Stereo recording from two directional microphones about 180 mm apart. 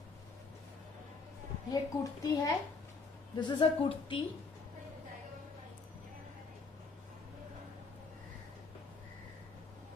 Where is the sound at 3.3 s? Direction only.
25° left (ahead or behind).